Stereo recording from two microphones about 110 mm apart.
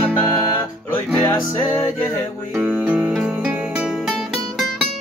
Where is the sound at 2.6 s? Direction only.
15° right (ahead or behind).